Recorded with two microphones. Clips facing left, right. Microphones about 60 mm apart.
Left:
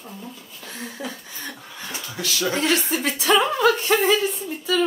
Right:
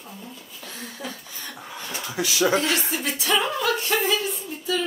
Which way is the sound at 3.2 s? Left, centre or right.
Left.